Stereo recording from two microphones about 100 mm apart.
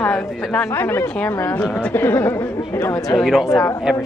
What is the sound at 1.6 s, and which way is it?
Speech, 10° left (ahead or behind).